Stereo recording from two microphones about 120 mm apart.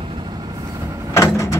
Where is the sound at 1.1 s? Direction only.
25° left (ahead or behind).